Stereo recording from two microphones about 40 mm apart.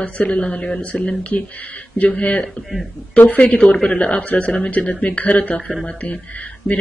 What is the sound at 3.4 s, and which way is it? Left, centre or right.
Speech, left.